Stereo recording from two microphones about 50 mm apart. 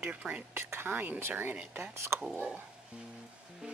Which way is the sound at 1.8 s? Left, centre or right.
Right.